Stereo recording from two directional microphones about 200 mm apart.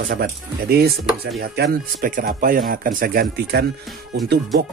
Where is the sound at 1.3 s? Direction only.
55° right (ahead or behind).